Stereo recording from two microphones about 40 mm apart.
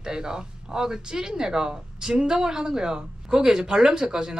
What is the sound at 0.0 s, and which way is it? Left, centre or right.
A man's voice, centre.